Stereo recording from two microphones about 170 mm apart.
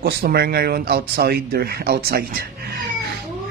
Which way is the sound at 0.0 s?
70° right (ahead or behind).